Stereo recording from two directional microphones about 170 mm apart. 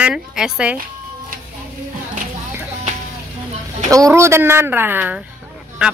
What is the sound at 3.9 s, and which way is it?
A woman's voice, 20° right (ahead or behind).